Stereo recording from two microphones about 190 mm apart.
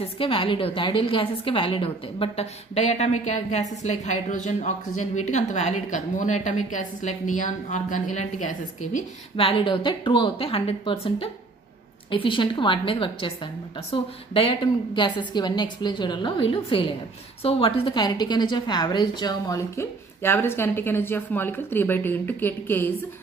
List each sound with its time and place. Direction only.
0.0 s a woman's voice: 30° left (ahead or behind)
8.9 s a woman's voice: 30° left (ahead or behind)
14.3 s a woman's voice: 25° left (ahead or behind)